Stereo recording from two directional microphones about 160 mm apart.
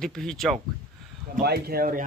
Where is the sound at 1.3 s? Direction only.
70° right (ahead or behind).